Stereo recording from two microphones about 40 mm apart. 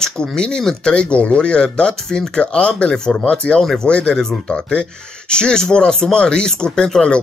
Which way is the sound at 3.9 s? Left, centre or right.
Left.